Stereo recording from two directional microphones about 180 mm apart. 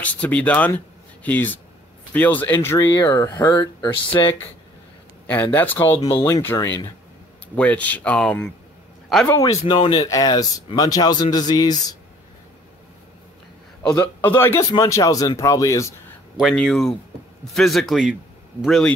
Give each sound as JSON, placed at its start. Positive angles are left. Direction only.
{"t": 0.0, "sound": "speech", "side_deg": 10}
{"t": 5.2, "sound": "speech", "side_deg": 10}
{"t": 5.9, "sound": "speech", "side_deg": 20}
{"t": 9.5, "sound": "speech", "side_deg": 30}
{"t": 13.8, "sound": "speech", "side_deg": 10}
{"t": 16.3, "sound": "speech", "side_deg": 5}